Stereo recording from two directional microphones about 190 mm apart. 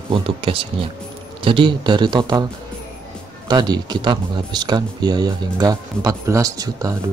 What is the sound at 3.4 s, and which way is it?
Speech, 20° right (ahead or behind).